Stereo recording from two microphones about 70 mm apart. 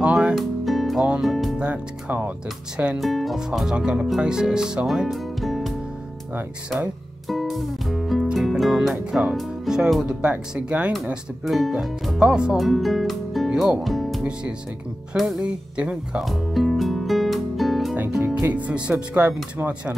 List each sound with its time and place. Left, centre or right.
0.0 s music: centre
1.2 s speech: centre
1.6 s speech: centre
3.0 s speech: centre
7.2 s speech: centre
11.4 s speech: centre
12.5 s speech: centre
13.5 s speech: centre
13.8 s music: centre
15.1 s speech: centre
16.3 s music: centre
18.7 s speech: centre